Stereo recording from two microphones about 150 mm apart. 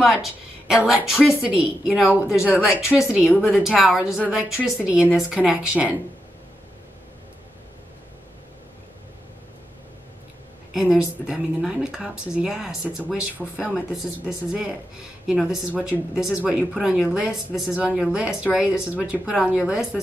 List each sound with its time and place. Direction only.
0.0 s a woman's voice: centre (ahead or behind)
2.1 s speech: 20° left (ahead or behind)
2.4 s a woman's voice: 5° right (ahead or behind)
10.7 s a woman's voice: 5° right (ahead or behind)